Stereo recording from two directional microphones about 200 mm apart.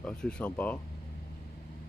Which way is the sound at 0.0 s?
5° left (ahead or behind).